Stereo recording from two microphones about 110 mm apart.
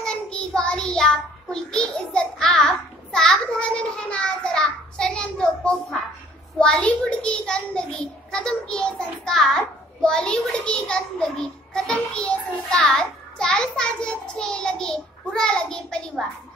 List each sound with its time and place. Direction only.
0.0 s child singing: 10° left (ahead or behind)
6.6 s a child's voice: 10° left (ahead or behind)